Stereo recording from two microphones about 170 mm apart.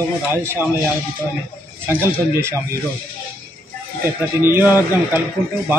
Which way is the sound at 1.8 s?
15° right (ahead or behind).